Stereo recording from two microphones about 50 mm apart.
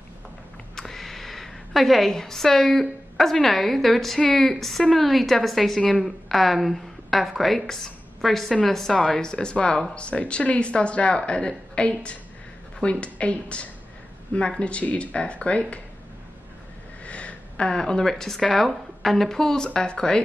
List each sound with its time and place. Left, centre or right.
0.7 s a sound: centre
3.4 s a woman's voice: centre; by 15.6 s left
17.0 s speech: left